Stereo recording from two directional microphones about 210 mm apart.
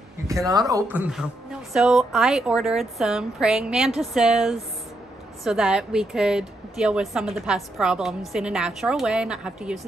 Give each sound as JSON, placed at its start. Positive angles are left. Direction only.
{"t": 0.5, "sound": "speech", "side_deg": -15}
{"t": 1.7, "sound": "a woman's voice", "side_deg": 0}